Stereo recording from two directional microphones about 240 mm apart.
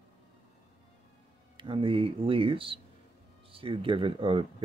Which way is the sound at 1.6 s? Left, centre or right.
Right.